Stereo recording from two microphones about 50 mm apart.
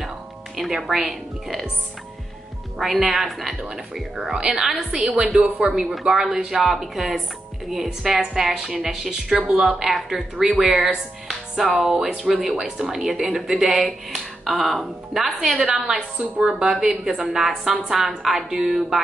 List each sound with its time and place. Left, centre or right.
0.6 s speech: centre
2.8 s a woman's voice: centre
11.2 s music: centre
11.8 s speech: centre
15.6 s a woman's voice: centre